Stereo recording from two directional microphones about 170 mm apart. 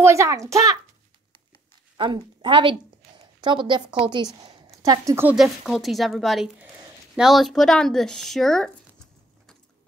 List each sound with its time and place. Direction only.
0.0 s a child's voice: 15° right (ahead or behind)
2.0 s a woman's voice: 30° right (ahead or behind)
4.4 s a sound: 35° right (ahead or behind)
4.8 s a woman's voice: 20° right (ahead or behind)
5.3 s speech: centre (ahead or behind)